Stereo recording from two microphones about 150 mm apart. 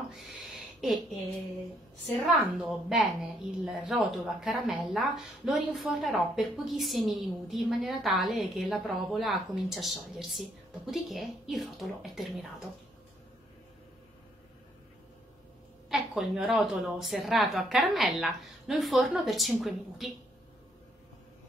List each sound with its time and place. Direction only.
0.1 s a sound: centre (ahead or behind)
2.2 s a woman's voice: centre (ahead or behind)
15.9 s a woman's voice: 5° right (ahead or behind)